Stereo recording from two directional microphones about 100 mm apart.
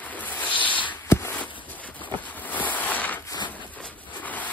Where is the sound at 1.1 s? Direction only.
25° left (ahead or behind).